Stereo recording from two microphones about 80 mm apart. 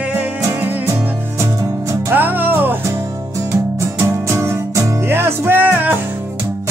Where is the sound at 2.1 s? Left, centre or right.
Right.